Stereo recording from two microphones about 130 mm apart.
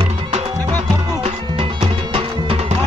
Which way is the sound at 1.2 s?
50° right (ahead or behind).